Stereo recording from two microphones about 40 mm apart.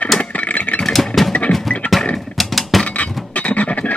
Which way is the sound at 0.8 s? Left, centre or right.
Centre.